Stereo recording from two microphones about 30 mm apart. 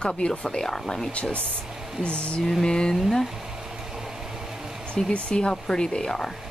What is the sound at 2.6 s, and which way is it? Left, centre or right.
Speech, left.